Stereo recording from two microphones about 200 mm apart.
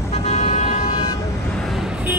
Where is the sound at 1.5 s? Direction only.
Centre (ahead or behind).